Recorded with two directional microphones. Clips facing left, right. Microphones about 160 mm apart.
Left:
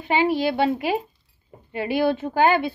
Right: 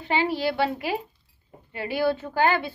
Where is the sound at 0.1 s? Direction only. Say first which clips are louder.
Left 4 dB; 15° left (ahead or behind).